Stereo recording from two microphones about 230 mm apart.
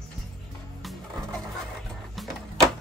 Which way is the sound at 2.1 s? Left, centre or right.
Centre.